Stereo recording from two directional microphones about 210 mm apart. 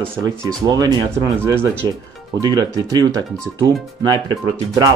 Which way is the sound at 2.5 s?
20° right (ahead or behind).